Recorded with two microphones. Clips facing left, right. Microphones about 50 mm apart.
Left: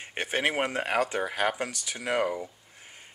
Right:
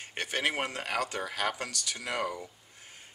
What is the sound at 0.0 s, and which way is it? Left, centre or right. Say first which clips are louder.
Speech: left 3 dB; centre.